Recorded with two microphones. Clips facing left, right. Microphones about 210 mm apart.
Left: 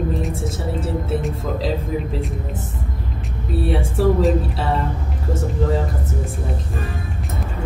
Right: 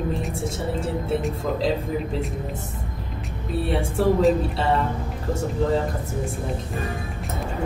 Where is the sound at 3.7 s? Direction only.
Centre (ahead or behind).